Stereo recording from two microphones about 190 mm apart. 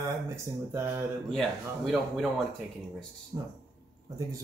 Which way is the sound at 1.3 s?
Centre (ahead or behind).